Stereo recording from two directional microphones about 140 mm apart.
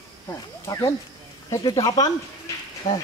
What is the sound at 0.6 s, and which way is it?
Speech, 25° left (ahead or behind).